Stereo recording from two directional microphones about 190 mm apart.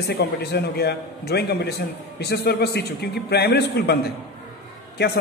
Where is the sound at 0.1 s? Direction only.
60° left (ahead or behind).